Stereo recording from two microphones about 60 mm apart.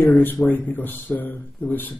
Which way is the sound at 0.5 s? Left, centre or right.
Left.